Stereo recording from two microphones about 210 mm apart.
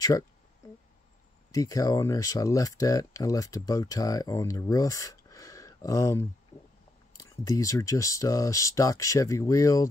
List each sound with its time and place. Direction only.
1.5 s speech: 15° left (ahead or behind)